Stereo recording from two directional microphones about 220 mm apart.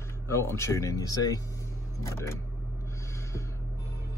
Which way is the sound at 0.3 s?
10° left (ahead or behind).